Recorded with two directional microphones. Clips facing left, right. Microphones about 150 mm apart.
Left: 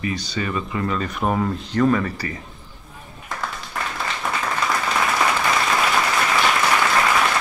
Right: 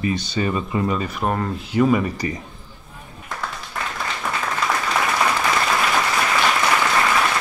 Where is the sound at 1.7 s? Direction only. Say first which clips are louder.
Right 2 dB; 10° right (ahead or behind).